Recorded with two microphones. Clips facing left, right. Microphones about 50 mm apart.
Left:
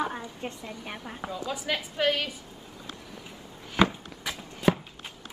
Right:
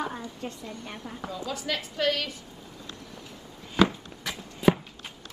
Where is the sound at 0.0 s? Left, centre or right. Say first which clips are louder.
Left 1 dB; centre.